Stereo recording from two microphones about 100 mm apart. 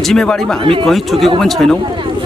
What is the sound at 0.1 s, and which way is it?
Speech, 5° left (ahead or behind).